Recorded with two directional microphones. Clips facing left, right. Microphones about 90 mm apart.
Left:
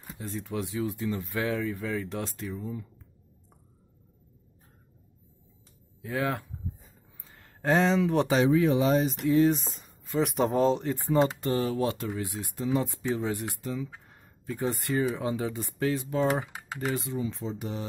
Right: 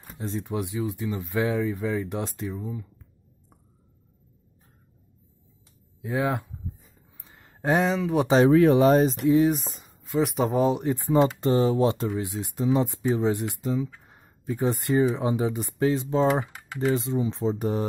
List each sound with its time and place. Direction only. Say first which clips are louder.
0.2 s speech: right 4 dB; 20° right (ahead or behind)
6.0 s speech: right 4 dB; 20° right (ahead or behind)
7.2 s a sound: right 4 dB; 20° right (ahead or behind)
7.8 s speech: even; 5° right (ahead or behind)
8.5 s speech: right 6 dB; 60° right (ahead or behind)
9.2 s speech: right 3 dB; 15° right (ahead or behind)
9.5 s speech: right 1 dB; centre (ahead or behind)
10.6 s speech: right 2 dB; 15° right (ahead or behind); by 17.8 s 40° right (ahead or behind)